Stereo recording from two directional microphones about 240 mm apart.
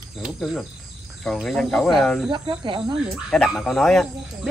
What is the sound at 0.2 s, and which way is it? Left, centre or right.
Speech, centre.